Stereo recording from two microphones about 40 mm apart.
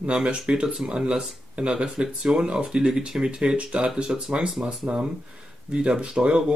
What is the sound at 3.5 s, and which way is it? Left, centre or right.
Speech, right.